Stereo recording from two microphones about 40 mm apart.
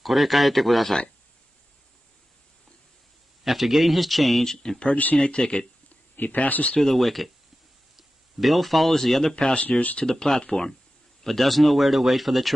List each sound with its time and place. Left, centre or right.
0.0 s speech: centre
3.4 s speech: centre
4.5 s speech: centre
4.8 s speech: left
5.1 s speech: centre
6.1 s speech: left
6.8 s speech: centre
9.4 s speech: left
10.0 s speech: centre
11.2 s speech: centre